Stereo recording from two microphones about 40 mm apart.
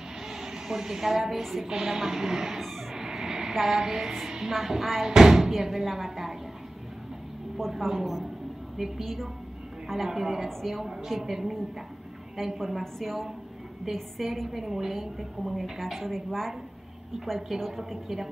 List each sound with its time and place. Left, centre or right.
0.3 s a woman's voice: centre
1.7 s speech: centre
2.6 s a sound: centre
5.0 s speech: centre
7.7 s a woman's voice: centre
17.6 s a woman's voice: centre